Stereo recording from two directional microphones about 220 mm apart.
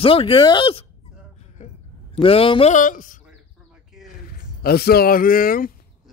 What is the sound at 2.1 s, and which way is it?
Speech, 25° left (ahead or behind).